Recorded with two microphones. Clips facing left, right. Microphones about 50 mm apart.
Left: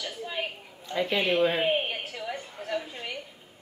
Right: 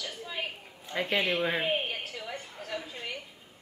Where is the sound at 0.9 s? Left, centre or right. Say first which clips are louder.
Left 4 dB; right.